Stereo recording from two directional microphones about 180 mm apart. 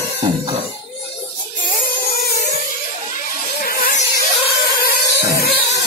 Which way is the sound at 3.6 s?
55° left (ahead or behind).